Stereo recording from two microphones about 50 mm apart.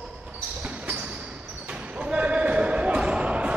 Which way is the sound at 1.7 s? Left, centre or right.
Right.